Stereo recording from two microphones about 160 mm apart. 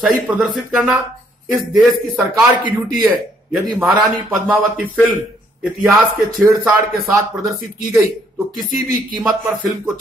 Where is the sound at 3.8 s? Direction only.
10° right (ahead or behind).